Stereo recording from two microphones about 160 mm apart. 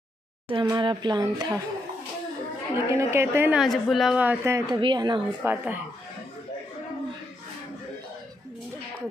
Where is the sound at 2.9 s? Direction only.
15° right (ahead or behind).